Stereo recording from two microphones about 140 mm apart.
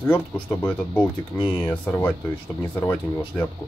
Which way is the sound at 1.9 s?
15° left (ahead or behind).